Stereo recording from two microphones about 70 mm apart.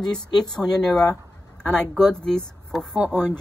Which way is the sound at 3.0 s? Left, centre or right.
Right.